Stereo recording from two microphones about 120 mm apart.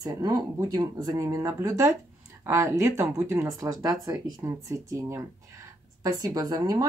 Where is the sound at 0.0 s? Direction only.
30° right (ahead or behind).